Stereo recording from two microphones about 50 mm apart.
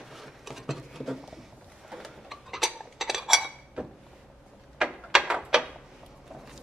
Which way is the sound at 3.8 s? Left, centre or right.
Right.